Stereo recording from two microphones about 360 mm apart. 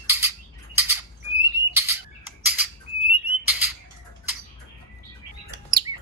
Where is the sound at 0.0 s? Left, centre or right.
Centre.